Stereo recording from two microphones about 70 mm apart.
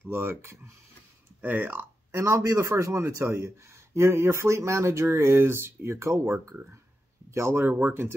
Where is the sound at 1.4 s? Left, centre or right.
Right.